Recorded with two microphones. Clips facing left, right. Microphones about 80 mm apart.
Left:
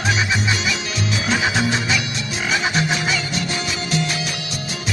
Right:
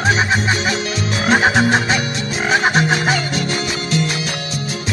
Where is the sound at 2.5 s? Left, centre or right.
Right.